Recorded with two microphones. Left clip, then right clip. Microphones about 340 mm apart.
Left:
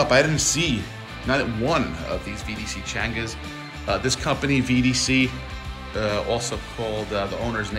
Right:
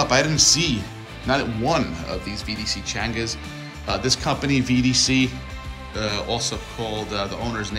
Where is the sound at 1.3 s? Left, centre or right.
Centre.